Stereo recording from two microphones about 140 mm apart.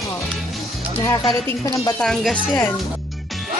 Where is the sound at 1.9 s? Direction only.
5° left (ahead or behind).